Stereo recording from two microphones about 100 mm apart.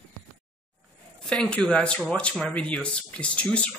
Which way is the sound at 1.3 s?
10° left (ahead or behind).